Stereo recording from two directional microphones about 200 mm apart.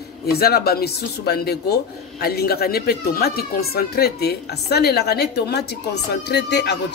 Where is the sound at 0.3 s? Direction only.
50° left (ahead or behind).